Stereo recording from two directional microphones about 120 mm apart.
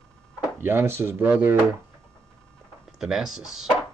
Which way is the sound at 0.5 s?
20° right (ahead or behind).